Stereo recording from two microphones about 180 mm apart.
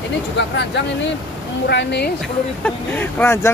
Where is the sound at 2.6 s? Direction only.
10° left (ahead or behind).